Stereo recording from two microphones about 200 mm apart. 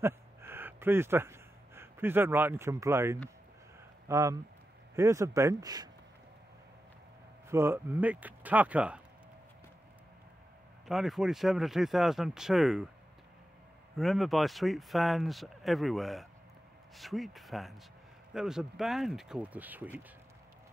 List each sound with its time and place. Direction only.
0.0 s a sound: 10° right (ahead or behind)
4.1 s speech: 15° right (ahead or behind)
7.4 s speech: 10° right (ahead or behind)
10.9 s speech: centre (ahead or behind)
13.9 s speech: centre (ahead or behind)